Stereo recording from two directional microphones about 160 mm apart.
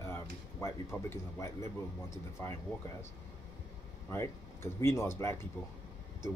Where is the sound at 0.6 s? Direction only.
15° left (ahead or behind).